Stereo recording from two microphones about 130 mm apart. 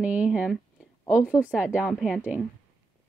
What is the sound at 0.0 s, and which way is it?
Speech, 10° right (ahead or behind).